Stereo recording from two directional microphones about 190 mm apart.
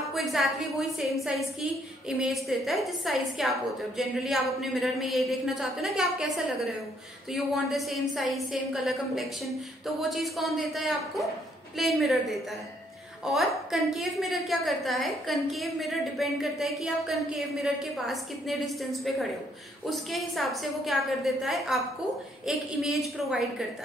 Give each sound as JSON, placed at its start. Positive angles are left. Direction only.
{"t": 0.1, "sound": "a woman's voice", "side_deg": 0}